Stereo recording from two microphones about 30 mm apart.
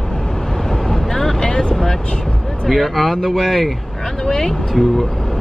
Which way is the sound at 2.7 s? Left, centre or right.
Centre.